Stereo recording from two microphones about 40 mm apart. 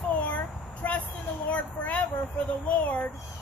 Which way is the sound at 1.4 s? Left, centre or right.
Left.